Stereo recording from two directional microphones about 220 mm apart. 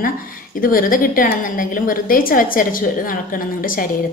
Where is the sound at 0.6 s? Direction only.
40° left (ahead or behind).